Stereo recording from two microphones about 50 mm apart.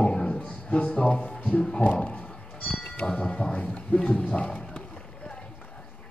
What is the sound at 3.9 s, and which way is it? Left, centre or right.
Horse, centre.